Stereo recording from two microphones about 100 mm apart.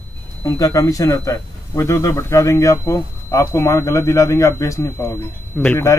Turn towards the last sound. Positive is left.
turn(degrees=20)  # may be behind; listen again after turning